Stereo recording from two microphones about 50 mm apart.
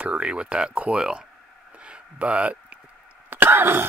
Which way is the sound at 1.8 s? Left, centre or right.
Right.